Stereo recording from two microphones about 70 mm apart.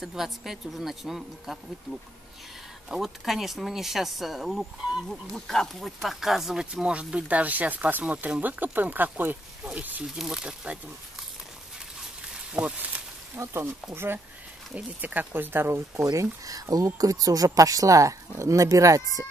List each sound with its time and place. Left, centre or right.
0.0 s speech: centre
5.3 s speech: centre; by 9.4 s right
10.0 s speech: centre
12.5 s speech: right
13.4 s speech: right
16.2 s speech: right